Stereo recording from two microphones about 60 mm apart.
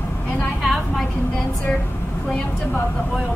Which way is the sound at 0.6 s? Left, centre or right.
Centre.